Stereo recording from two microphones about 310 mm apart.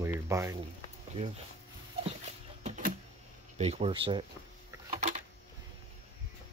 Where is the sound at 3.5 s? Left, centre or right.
Right.